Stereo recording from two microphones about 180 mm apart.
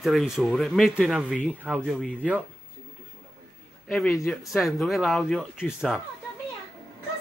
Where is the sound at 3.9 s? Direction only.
Centre (ahead or behind).